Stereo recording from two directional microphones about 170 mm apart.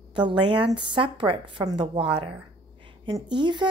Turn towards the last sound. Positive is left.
turn(degrees=-25)  # may be behind; listen again after turning